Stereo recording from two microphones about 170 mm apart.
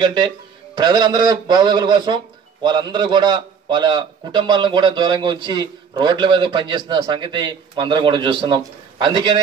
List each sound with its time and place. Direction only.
0.0 s a man's voice: 25° right (ahead or behind)